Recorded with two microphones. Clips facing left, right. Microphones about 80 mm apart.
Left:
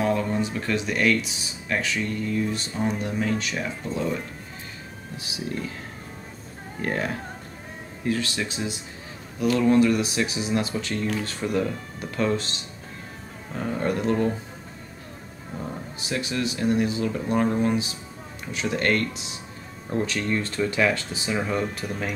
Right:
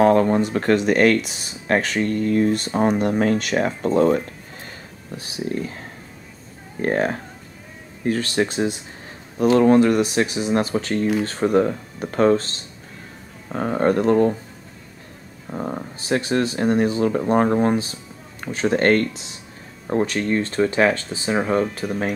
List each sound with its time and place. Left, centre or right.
0.0 s speech: right
5.1 s speech: right
6.8 s speech: right
15.5 s speech: right